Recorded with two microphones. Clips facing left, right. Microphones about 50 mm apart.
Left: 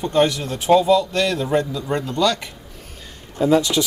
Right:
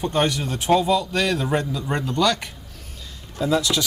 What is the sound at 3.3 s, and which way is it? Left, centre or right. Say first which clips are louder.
Speech: left 4 dB; left.